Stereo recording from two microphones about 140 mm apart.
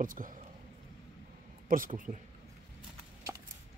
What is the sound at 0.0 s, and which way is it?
Speech, 75° right (ahead or behind).